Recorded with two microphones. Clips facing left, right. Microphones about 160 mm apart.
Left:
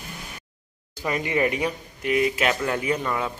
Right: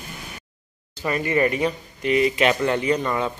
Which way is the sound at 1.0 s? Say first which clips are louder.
Right 2 dB; 10° left (ahead or behind).